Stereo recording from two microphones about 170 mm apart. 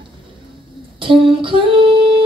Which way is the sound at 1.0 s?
30° right (ahead or behind).